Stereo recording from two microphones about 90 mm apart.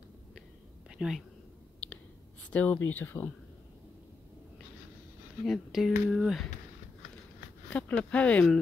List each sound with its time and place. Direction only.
0.8 s whispering: 10° right (ahead or behind)
2.5 s speech: 15° left (ahead or behind)
5.4 s speech: centre (ahead or behind)
7.7 s speech: 15° left (ahead or behind)